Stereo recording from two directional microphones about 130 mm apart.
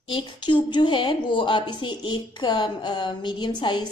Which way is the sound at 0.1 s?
35° left (ahead or behind).